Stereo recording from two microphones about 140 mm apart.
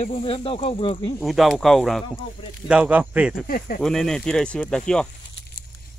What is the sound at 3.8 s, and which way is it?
Speech, 5° left (ahead or behind).